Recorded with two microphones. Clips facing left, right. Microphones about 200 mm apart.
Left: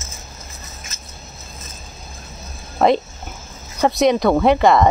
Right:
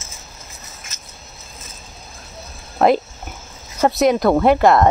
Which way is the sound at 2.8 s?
Centre (ahead or behind).